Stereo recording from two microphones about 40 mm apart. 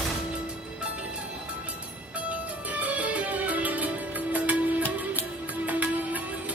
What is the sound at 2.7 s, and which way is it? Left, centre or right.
Music, right.